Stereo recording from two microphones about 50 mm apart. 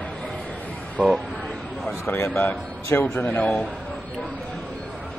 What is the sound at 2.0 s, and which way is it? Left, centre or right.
Speech, left.